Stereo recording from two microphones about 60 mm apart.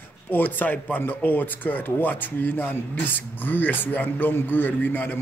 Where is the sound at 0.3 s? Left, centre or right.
Left.